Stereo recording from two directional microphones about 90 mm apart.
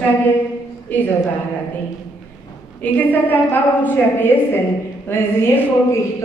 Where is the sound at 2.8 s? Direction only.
20° left (ahead or behind).